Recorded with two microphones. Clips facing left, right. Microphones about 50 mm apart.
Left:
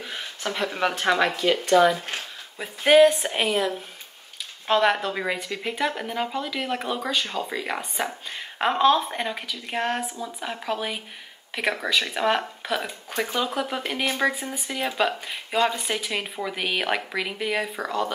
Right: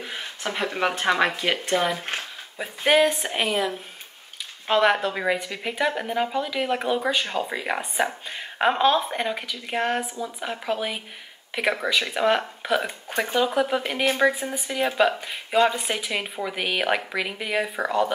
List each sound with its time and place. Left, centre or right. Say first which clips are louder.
0.0 s speech: even; centre
2.6 s speech: left 4 dB; centre
13.5 s speech: right 4 dB; centre
14.0 s speech: right 3 dB; centre
14.5 s speech: right 3 dB; centre